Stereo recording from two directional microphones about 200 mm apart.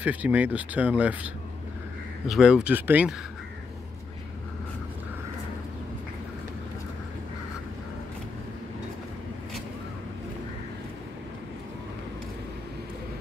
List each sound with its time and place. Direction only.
0.0 s speech: 5° right (ahead or behind)